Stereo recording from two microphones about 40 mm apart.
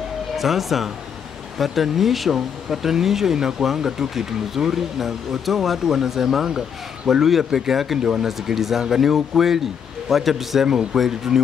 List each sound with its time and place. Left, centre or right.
0.4 s a man's voice: centre
8.0 s speech: centre
8.3 s a man's voice: centre